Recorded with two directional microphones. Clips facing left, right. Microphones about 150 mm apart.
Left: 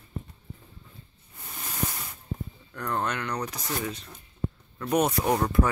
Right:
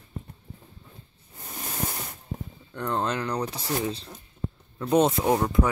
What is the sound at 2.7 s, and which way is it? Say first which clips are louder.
Speech: right 2 dB; 25° right (ahead or behind).